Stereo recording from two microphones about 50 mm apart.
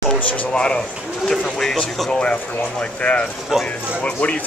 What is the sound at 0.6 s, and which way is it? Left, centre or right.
Speech, centre.